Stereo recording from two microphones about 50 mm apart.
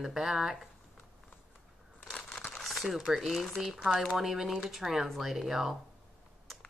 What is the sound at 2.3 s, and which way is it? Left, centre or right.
Crumpling, left.